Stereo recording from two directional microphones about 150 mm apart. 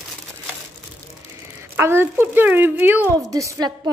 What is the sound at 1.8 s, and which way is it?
A woman's voice, 15° right (ahead or behind).